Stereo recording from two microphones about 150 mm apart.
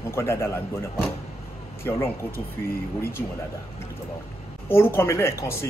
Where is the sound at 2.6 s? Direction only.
15° left (ahead or behind).